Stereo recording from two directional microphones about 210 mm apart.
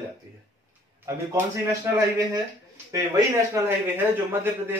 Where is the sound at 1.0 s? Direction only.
15° right (ahead or behind).